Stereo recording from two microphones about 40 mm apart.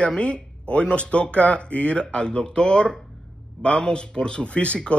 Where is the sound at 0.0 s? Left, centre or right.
Left.